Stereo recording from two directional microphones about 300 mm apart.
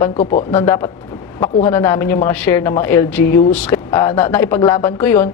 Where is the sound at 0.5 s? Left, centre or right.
Centre.